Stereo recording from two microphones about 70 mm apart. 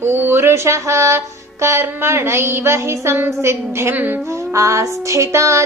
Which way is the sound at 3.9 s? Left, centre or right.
Right.